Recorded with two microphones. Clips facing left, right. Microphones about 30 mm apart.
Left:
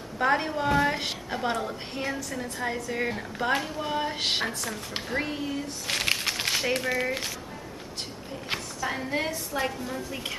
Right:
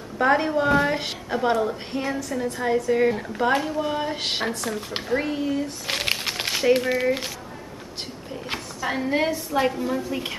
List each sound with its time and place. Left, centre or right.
0.2 s a woman's voice: centre
5.9 s a sound: centre
8.8 s a woman's voice: centre